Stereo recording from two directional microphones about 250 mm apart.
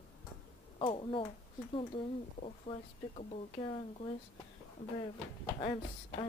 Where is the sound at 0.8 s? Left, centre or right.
Left.